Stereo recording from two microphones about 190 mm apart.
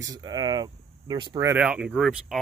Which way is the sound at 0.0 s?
20° right (ahead or behind).